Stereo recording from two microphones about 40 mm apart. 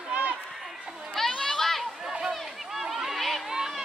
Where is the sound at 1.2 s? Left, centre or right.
Centre.